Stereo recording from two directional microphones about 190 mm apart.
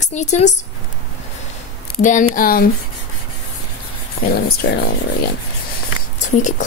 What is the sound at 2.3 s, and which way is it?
Speech, 50° left (ahead or behind).